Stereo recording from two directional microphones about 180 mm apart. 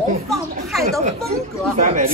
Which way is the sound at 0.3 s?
Centre (ahead or behind).